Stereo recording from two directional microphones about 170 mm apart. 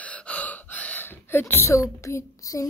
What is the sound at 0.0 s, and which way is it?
Gasp, 10° left (ahead or behind).